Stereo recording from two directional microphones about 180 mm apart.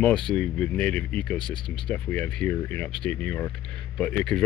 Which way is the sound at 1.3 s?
25° left (ahead or behind).